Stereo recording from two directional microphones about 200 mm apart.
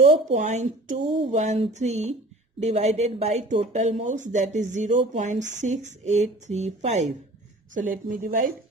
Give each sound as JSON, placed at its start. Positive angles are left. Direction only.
{"t": 0.0, "sound": "speech", "side_deg": -40}